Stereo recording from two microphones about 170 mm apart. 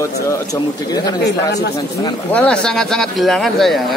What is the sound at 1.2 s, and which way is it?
Speech, 75° left (ahead or behind).